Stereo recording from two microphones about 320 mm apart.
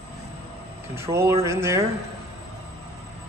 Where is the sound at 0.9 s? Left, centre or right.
Centre.